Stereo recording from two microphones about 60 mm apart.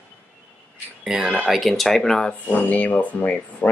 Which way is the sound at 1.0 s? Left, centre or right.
Centre.